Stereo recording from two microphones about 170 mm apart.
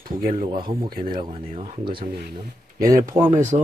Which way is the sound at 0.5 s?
25° right (ahead or behind).